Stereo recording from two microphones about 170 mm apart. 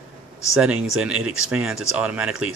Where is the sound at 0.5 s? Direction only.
5° right (ahead or behind).